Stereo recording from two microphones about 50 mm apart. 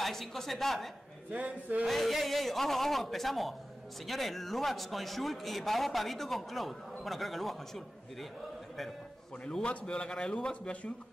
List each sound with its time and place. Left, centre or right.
0.0 s a man's voice: centre
1.3 s speech: right
1.9 s a man's voice: centre
9.5 s a man's voice: centre